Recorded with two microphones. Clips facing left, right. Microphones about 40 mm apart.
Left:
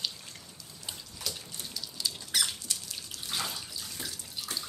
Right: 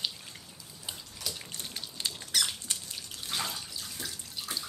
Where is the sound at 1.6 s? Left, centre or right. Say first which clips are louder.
Left 1 dB; right.